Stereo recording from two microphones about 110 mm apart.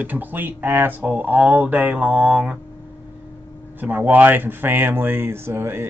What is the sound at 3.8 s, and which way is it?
Speech, 15° right (ahead or behind).